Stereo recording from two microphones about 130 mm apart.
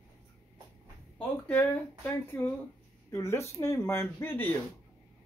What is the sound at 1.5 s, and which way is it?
Speech, 15° left (ahead or behind).